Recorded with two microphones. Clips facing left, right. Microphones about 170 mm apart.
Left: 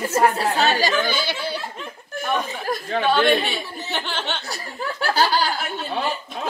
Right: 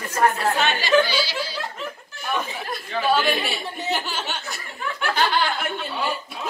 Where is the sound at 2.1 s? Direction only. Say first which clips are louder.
Left 9 dB; 55° left (ahead or behind).